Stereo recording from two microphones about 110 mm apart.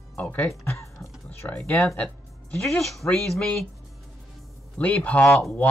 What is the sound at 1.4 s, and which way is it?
Speech, 20° left (ahead or behind).